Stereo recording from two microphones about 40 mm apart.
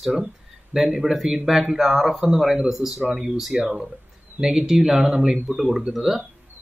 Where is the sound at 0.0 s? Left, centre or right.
Centre.